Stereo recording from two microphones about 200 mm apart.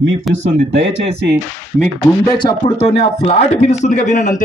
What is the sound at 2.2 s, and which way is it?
A man's voice, 20° left (ahead or behind).